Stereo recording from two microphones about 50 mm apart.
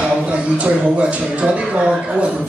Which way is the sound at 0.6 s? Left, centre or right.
Right.